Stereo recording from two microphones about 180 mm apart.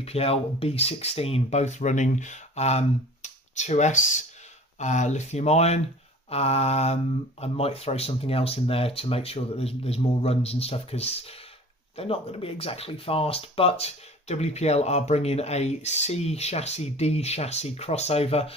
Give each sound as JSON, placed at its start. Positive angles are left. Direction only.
{"t": 0.0, "sound": "speech", "side_deg": 35}